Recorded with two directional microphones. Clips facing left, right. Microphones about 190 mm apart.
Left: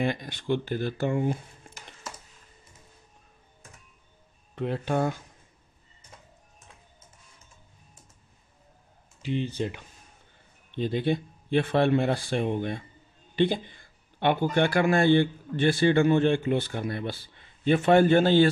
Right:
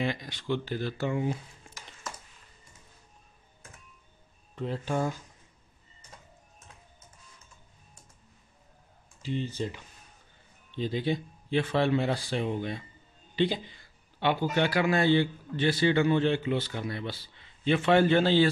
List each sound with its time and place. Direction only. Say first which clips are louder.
0.0 s speech: left 3 dB; 50° left (ahead or behind)
4.6 s speech: left 3 dB; 65° left (ahead or behind)
9.2 s a man's voice: left 3 dB; 65° left (ahead or behind)